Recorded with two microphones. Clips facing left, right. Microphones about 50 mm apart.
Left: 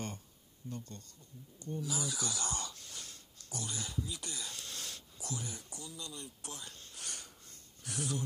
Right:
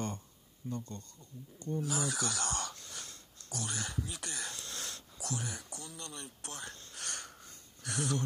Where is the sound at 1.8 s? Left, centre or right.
Right.